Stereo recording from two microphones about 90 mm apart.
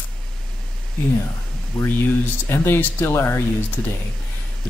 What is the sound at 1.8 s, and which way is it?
Speech, 5° left (ahead or behind).